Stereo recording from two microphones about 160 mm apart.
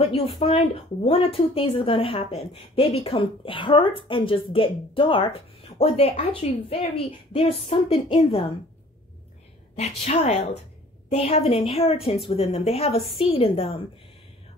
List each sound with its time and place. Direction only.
0.0 s a woman's voice: 40° left (ahead or behind)
9.8 s a woman's voice: 40° left (ahead or behind)